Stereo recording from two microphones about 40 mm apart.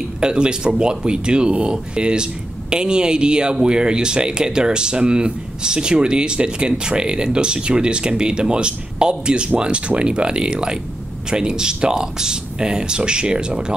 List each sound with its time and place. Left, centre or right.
0.2 s speech: right